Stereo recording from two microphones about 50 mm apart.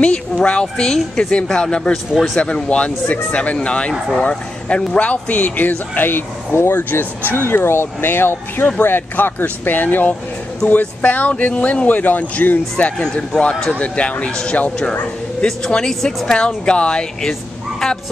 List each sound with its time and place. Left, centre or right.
0.0 s speech: left
0.9 s a woman's voice: centre
1.3 s speech: centre
12.9 s speech: centre
13.7 s speech: left; by 16.3 s centre
16.3 s speech: centre
17.2 s dog: centre